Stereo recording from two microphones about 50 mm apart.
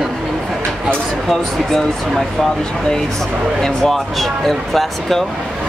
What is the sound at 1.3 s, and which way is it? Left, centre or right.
Speech, centre.